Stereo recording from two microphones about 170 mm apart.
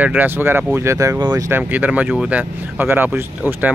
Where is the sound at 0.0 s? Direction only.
10° right (ahead or behind).